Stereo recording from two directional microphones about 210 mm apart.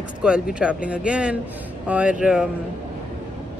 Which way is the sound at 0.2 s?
5° right (ahead or behind).